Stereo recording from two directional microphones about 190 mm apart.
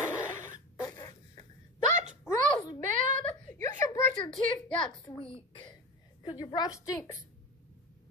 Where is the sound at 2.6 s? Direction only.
20° left (ahead or behind).